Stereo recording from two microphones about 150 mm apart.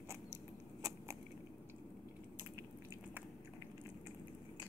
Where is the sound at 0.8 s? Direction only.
25° right (ahead or behind).